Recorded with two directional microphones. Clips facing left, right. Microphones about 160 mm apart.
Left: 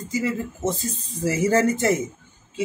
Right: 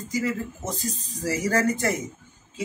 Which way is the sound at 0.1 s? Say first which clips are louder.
Left 2 dB; 25° left (ahead or behind).